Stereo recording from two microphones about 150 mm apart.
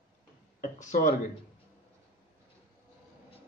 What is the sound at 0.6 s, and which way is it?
Speech, 55° left (ahead or behind).